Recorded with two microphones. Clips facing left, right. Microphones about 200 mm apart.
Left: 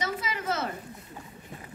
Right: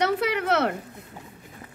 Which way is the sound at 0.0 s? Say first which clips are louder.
Right 8 dB; 65° right (ahead or behind).